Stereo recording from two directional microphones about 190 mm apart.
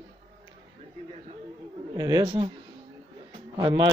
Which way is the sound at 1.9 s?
20° right (ahead or behind).